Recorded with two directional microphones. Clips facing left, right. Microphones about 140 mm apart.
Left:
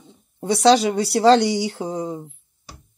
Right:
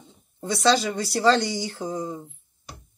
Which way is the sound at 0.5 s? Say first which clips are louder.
Left 6 dB; 70° left (ahead or behind).